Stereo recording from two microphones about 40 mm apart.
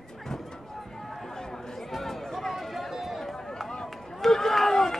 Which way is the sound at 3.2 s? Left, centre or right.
Centre.